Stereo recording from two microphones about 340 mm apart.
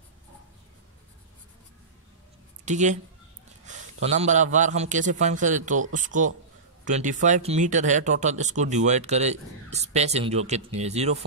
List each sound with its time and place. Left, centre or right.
2.6 s speech: right